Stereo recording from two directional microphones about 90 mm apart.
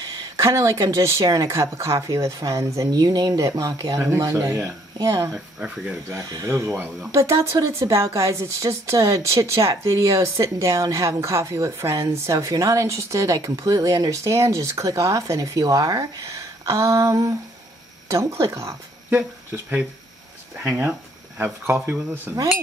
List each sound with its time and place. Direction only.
0.4 s speech: 35° right (ahead or behind)
2.9 s speech: 50° right (ahead or behind)
4.4 s speech: 30° right (ahead or behind)
4.9 s speech: 40° right (ahead or behind)
5.3 s speech: 10° right (ahead or behind)
6.2 s speech: 35° right (ahead or behind)
19.0 s speech: 20° right (ahead or behind)